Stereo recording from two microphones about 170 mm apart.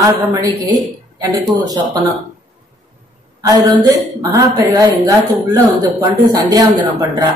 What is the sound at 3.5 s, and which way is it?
A man's voice, 20° right (ahead or behind).